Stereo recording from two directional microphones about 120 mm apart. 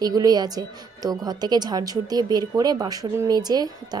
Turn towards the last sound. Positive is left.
turn(degrees=-35)  # may be behind; listen again after turning